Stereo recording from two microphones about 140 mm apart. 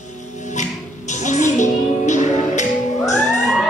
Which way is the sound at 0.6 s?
60° left (ahead or behind).